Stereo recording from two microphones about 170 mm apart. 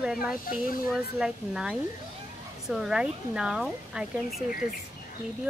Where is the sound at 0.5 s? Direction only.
55° left (ahead or behind).